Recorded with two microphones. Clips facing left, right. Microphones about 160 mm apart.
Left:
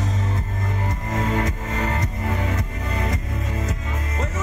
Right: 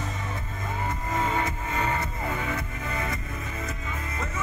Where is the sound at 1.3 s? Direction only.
80° left.